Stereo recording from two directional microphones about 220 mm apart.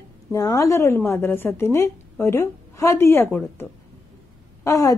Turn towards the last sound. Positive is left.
turn(degrees=15)  # may be behind; listen again after turning